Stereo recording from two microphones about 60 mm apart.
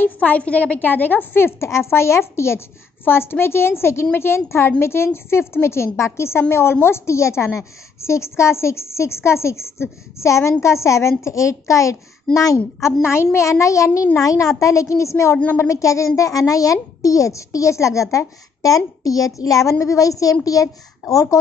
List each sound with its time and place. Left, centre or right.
0.0 s a woman's voice: left
12.3 s a woman's voice: centre
13.0 s a woman's voice: left
18.1 s a woman's voice: left